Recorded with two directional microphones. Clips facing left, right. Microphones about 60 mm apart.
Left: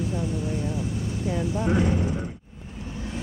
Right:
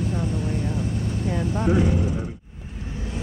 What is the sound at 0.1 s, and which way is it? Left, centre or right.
Speech, right.